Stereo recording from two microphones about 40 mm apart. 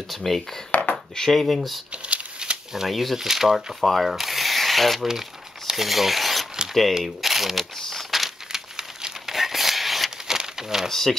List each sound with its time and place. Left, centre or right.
0.1 s speech: centre
0.7 s a sound: left
1.1 s speech: centre
2.0 s shuffling cards: right
2.9 s speech: centre
8.1 s crumpling: centre
10.2 s a sound: centre
10.9 s speech: centre